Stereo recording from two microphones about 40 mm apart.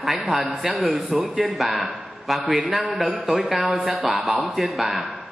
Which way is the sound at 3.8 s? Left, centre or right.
Right.